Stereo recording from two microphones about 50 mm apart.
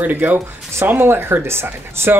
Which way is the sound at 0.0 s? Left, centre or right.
Right.